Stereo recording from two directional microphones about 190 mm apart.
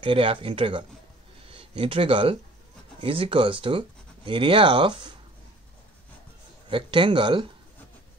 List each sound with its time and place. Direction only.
0.0 s speech: 30° right (ahead or behind)
6.7 s speech: 25° right (ahead or behind)